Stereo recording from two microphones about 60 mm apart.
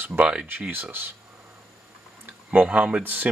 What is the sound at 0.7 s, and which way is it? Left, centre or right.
Speech, right.